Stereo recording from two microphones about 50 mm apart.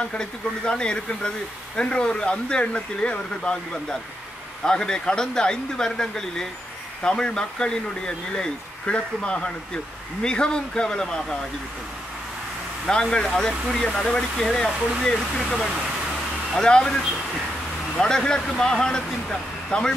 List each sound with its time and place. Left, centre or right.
0.1 s speech: centre
12.8 s speech: centre
17.9 s speech: centre